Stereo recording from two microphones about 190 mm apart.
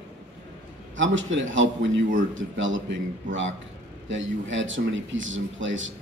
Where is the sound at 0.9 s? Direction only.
80° right.